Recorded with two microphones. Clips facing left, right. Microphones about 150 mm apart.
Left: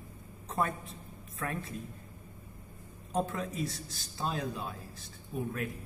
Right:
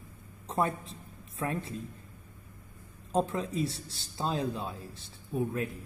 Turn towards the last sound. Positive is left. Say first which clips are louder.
# right 5 dB
turn(degrees=-25)  # may be behind; listen again after turning